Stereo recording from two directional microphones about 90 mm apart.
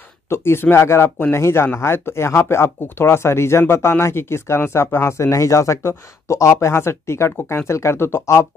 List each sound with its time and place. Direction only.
0.3 s speech: 25° left (ahead or behind)